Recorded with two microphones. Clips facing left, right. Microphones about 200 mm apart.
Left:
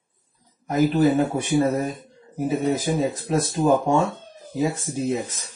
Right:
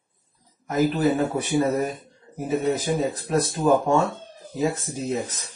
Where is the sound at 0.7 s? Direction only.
Centre (ahead or behind).